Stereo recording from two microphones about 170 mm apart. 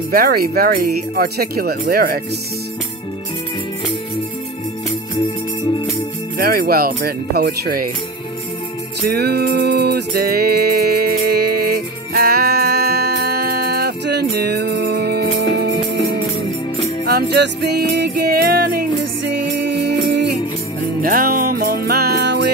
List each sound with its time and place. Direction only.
0.1 s speech: 65° right (ahead or behind)
6.3 s speech: 65° right (ahead or behind)
9.1 s music: 70° right (ahead or behind)
17.0 s music: 70° right (ahead or behind)
19.3 s music: 85° right
21.0 s music: 55° right (ahead or behind); by 22.5 s 80° right